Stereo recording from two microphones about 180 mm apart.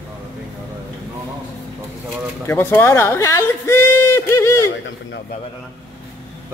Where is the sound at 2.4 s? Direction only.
10° left (ahead or behind).